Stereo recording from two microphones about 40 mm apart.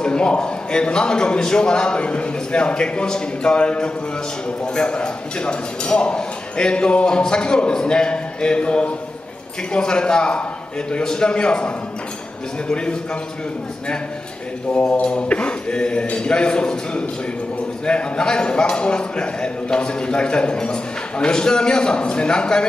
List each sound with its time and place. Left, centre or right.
0.0 s a man's voice: left
14.7 s mantra: left
15.1 s a man's voice: left